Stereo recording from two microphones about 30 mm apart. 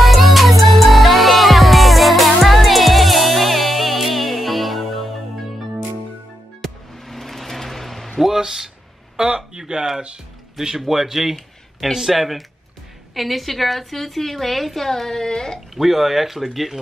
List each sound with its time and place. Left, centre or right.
0.0 s music: centre
6.6 s music: centre
9.5 s a sound: right
10.9 s a woman's voice: centre; by 15.6 s left
15.7 s a woman's voice: centre